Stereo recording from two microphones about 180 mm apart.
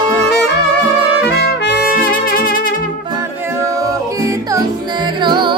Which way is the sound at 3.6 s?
15° right (ahead or behind).